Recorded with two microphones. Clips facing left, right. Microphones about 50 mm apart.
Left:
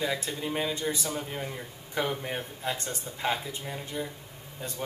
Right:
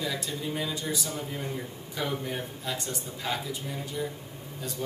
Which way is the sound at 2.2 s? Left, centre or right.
Left.